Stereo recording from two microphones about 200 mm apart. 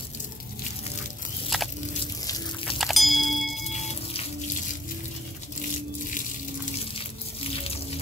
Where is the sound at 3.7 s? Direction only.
35° left (ahead or behind).